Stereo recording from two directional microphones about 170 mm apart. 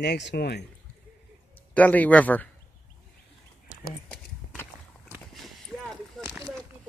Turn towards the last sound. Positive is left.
turn(degrees=5)  # may be behind; listen again after turning